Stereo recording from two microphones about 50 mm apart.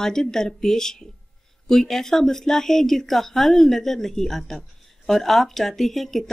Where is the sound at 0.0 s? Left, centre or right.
Centre.